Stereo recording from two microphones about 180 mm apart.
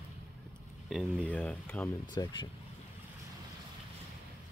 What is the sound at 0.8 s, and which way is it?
Speech, centre (ahead or behind).